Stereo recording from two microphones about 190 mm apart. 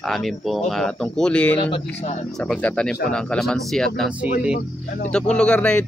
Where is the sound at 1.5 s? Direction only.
30° left (ahead or behind).